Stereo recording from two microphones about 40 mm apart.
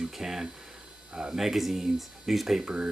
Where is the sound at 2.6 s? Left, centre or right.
Right.